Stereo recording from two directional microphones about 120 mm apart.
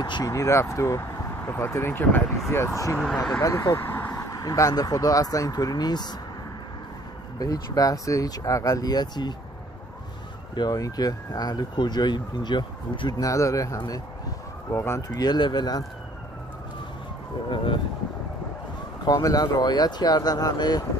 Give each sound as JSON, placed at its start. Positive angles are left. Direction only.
{"t": 0.0, "sound": "speech", "side_deg": 35}
{"t": 4.1, "sound": "speech", "side_deg": 30}
{"t": 7.3, "sound": "speech", "side_deg": 30}
{"t": 10.5, "sound": "speech", "side_deg": 35}
{"t": 13.2, "sound": "speech", "side_deg": 25}
{"t": 19.0, "sound": "speech", "side_deg": 30}